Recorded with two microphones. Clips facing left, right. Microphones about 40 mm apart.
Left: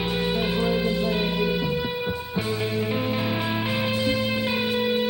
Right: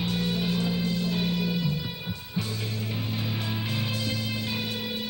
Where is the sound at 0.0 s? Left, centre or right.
Left.